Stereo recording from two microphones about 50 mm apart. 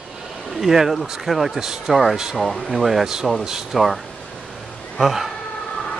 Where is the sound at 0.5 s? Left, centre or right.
Centre.